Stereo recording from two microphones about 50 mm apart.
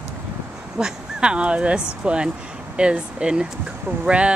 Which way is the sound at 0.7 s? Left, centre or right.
Centre.